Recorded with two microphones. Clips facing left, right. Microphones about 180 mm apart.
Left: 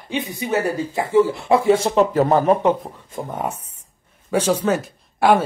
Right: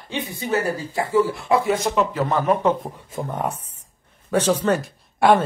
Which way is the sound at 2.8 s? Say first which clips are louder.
Right 1 dB; centre (ahead or behind).